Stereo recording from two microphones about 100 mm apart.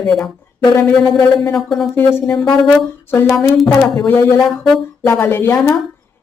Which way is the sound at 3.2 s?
Centre (ahead or behind).